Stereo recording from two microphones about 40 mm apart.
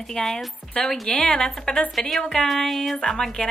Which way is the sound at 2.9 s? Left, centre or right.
Centre.